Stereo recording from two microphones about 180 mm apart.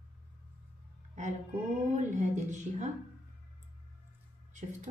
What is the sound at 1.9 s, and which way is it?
Speech, 40° right (ahead or behind).